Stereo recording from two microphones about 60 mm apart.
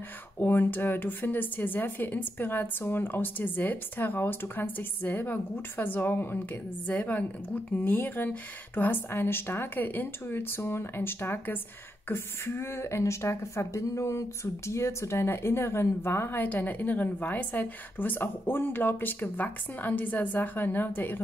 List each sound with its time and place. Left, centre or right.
0.4 s speech: left